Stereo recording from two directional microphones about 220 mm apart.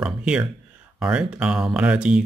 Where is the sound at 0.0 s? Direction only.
5° right (ahead or behind).